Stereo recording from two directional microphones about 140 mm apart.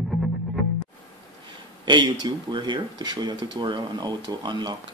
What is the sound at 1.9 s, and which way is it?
Speech, 35° right (ahead or behind).